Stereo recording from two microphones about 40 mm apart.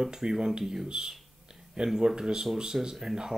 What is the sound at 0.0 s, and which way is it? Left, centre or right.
Speech, centre.